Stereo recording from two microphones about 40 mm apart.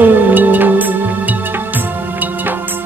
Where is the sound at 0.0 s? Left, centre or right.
Right.